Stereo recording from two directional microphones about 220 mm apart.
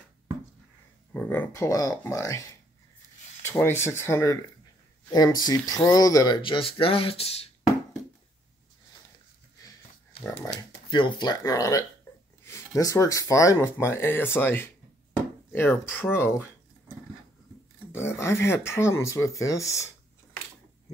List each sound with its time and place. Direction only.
1.1 s speech: 10° left (ahead or behind)
3.4 s speech: 10° left (ahead or behind); by 7.5 s 25° left (ahead or behind)
10.2 s speech: 15° left (ahead or behind)
17.9 s speech: 10° left (ahead or behind)